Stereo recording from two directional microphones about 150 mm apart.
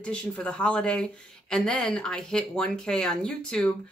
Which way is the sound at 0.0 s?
5° left (ahead or behind).